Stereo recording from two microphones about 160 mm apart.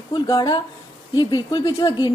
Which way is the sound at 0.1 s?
25° left (ahead or behind).